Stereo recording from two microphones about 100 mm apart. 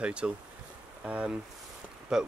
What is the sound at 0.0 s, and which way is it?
Speech, 10° right (ahead or behind).